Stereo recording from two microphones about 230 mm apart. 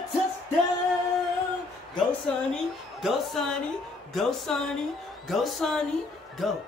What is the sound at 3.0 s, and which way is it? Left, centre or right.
A woman's voice, centre.